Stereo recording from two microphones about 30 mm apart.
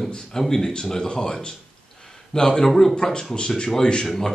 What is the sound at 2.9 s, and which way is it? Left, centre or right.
Speech, left.